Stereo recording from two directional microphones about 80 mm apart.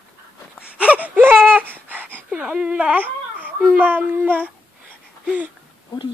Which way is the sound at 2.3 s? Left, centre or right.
Centre.